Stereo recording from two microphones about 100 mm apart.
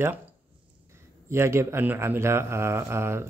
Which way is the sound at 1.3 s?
25° right (ahead or behind).